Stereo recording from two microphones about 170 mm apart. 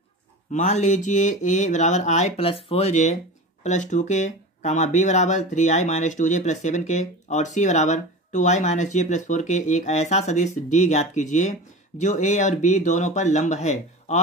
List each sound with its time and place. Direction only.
0.5 s speech: 45° left (ahead or behind)